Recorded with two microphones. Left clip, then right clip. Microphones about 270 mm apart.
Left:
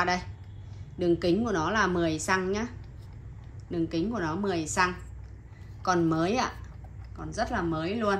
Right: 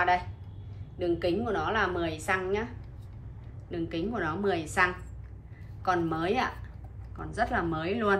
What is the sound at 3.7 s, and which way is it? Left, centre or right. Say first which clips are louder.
A woman's voice: left 2 dB; centre.